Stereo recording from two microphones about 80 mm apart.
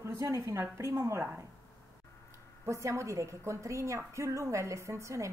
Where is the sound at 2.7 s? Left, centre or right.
Right.